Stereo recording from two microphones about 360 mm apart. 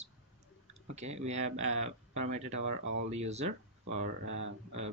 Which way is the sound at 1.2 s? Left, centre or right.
Centre.